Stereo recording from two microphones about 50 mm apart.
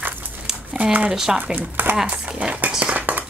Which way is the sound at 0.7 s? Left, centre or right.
Right.